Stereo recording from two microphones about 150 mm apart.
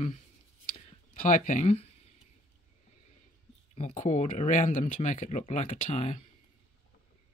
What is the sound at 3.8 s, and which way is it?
Speech, 50° left (ahead or behind).